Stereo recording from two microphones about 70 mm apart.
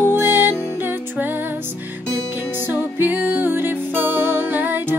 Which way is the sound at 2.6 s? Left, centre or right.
Right.